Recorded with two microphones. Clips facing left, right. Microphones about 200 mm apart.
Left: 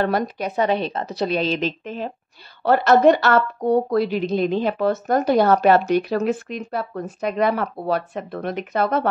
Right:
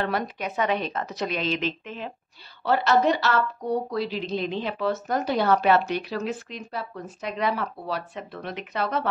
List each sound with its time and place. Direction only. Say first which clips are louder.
0.0 s speech: left 6 dB; 40° left (ahead or behind)
2.6 s speech: left 7 dB; 50° left (ahead or behind)